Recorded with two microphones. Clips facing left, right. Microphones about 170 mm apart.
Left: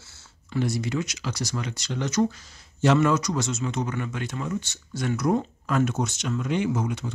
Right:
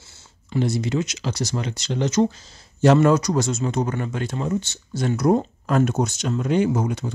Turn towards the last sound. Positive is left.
turn(degrees=-40)  # may be behind; listen again after turning